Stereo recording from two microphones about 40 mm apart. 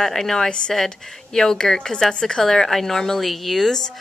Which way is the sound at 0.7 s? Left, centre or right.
Centre.